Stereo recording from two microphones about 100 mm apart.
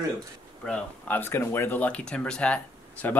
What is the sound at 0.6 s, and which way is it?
Speech, 15° left (ahead or behind).